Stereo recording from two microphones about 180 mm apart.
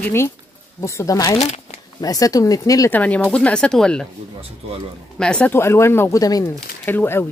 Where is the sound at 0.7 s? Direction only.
15° left (ahead or behind).